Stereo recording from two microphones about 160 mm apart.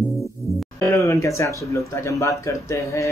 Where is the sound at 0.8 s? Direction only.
20° left (ahead or behind).